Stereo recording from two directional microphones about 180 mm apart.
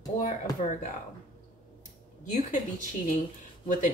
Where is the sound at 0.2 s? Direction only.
45° left (ahead or behind).